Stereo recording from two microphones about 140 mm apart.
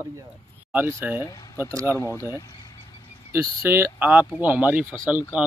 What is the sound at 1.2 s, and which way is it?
Speech, 25° left (ahead or behind).